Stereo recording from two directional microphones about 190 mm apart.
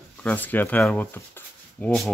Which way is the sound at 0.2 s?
10° left (ahead or behind).